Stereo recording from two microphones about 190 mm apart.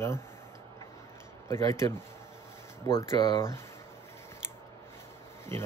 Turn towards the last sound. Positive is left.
turn(degrees=15)  # may be behind; listen again after turning